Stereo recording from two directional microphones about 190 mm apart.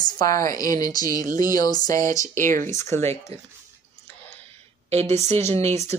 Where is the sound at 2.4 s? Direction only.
45° right (ahead or behind).